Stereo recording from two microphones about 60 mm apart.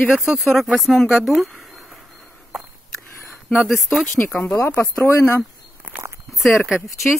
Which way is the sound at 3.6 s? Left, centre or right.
Centre.